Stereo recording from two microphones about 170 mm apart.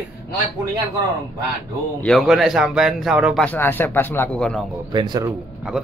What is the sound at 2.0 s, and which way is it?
Speech, centre (ahead or behind).